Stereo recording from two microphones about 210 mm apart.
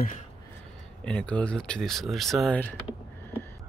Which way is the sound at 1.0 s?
5° left (ahead or behind).